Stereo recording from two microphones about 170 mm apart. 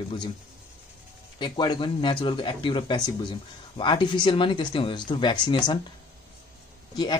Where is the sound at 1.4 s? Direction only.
25° left (ahead or behind).